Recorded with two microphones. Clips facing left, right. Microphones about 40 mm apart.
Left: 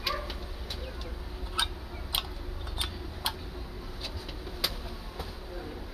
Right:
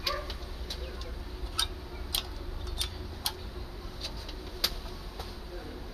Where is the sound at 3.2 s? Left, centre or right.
Left.